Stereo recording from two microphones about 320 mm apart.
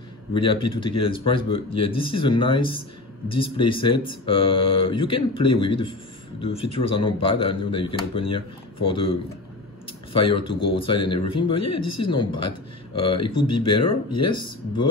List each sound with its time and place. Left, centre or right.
0.3 s speech: centre
10.3 s speech: left
10.7 s speech: centre
13.3 s speech: left
13.7 s speech: centre